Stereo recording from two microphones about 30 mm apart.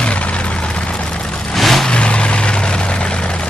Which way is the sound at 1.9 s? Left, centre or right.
Left.